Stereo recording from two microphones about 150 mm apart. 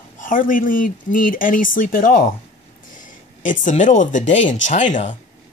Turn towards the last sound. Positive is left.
turn(degrees=55)  # may be behind; listen again after turning